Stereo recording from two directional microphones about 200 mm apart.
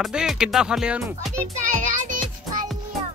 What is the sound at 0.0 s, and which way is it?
Speech, centre (ahead or behind).